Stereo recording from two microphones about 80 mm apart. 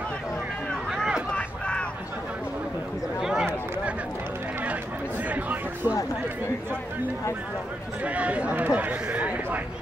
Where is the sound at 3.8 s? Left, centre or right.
Centre.